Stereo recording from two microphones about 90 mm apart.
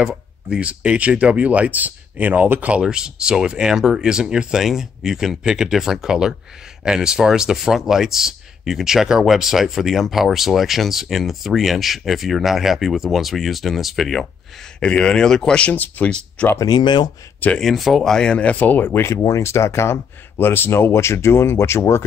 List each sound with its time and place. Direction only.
0.0 s speech: 10° right (ahead or behind); by 16.4 s 15° left (ahead or behind)
16.5 s speech: 50° left (ahead or behind)
17.6 s speech: centre (ahead or behind); by 22.0 s 30° left (ahead or behind)